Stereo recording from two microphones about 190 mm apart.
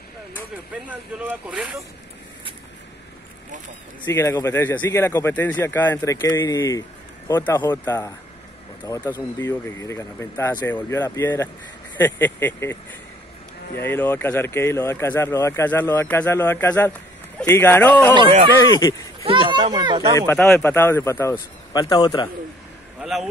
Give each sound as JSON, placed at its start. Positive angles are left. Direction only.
{"t": 0.8, "sound": "speech", "side_deg": -5}
{"t": 4.0, "sound": "speech", "side_deg": 15}
{"t": 13.7, "sound": "speech", "side_deg": 10}
{"t": 19.5, "sound": "speech", "side_deg": -25}
{"t": 20.2, "sound": "speech", "side_deg": 10}
{"t": 22.9, "sound": "vehicle", "side_deg": 0}